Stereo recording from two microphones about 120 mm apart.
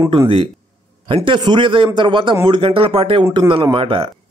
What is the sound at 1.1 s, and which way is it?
A man's voice, 45° right (ahead or behind).